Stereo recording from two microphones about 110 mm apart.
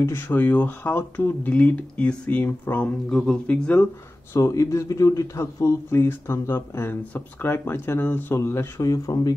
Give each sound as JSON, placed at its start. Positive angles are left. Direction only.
{"t": 0.0, "sound": "speech", "side_deg": 20}
{"t": 4.3, "sound": "speech", "side_deg": 30}